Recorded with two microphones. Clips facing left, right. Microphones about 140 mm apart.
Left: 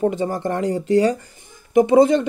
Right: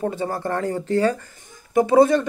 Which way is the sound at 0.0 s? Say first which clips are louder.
Left 4 dB; 15° left (ahead or behind).